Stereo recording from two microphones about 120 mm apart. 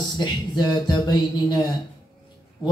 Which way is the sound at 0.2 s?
35° left (ahead or behind).